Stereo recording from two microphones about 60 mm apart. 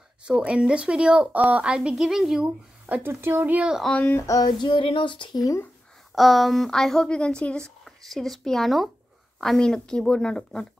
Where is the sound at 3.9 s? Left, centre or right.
Left.